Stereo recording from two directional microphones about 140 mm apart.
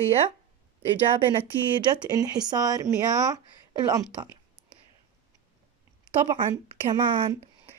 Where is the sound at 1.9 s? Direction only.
25° right (ahead or behind).